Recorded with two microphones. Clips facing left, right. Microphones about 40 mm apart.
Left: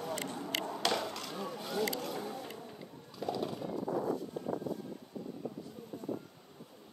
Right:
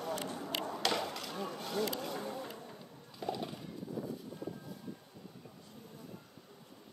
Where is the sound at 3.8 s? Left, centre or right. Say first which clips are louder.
Left 7 dB; left.